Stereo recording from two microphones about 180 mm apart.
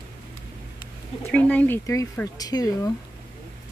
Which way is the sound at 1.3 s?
10° left (ahead or behind).